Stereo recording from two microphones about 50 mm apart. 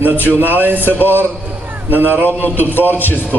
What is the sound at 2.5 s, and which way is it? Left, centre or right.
Speech, left.